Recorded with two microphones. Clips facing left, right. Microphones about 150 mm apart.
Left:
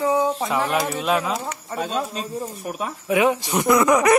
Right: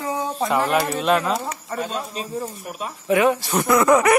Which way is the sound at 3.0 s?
15° left (ahead or behind).